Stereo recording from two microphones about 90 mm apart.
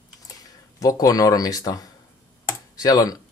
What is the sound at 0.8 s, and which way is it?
Speech, 40° left (ahead or behind).